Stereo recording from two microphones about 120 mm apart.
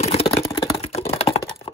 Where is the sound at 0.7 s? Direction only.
55° left (ahead or behind).